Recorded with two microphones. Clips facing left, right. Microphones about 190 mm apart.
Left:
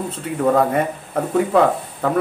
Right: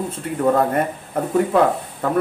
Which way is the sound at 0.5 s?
Centre (ahead or behind).